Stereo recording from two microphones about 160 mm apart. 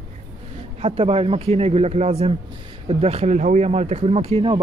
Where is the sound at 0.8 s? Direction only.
35° right (ahead or behind).